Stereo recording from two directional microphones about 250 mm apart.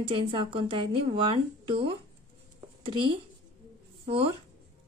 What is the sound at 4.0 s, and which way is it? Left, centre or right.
Speech, right.